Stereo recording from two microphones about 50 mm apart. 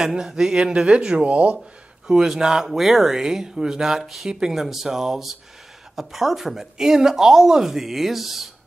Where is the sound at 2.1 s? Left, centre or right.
Centre.